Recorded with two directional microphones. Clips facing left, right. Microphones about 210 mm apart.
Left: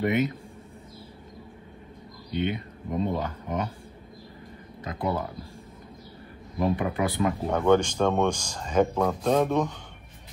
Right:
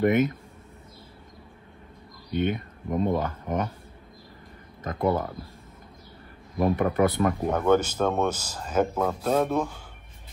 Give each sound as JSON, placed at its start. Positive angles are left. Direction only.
{"t": 0.0, "sound": "speech", "side_deg": -50}
{"t": 2.3, "sound": "speech", "side_deg": -50}
{"t": 4.8, "sound": "speech", "side_deg": -50}
{"t": 6.6, "sound": "speech", "side_deg": -50}
{"t": 7.5, "sound": "speech", "side_deg": -5}